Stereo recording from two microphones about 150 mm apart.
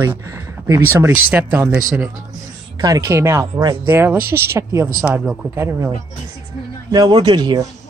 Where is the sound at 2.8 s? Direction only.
25° right (ahead or behind).